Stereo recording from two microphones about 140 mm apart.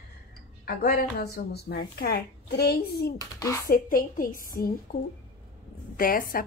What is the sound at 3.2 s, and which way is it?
Speech, 25° left (ahead or behind).